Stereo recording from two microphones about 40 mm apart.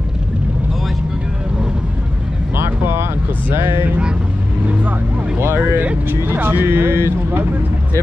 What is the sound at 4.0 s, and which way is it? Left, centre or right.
Speech, right.